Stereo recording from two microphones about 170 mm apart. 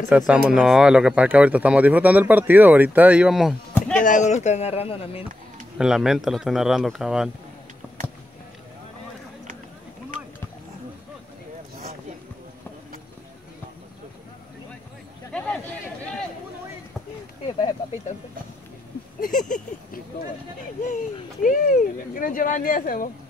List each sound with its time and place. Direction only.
0.3 s speech: 5° right (ahead or behind)
4.0 s speech: 45° left (ahead or behind)
5.8 s speech: 5° right (ahead or behind)
15.3 s a sound: 10° left (ahead or behind)
19.2 s a sound: 50° left (ahead or behind)
20.8 s speech: 50° left (ahead or behind)